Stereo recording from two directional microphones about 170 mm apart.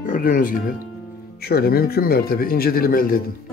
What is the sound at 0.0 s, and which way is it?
A man's voice, 50° left (ahead or behind).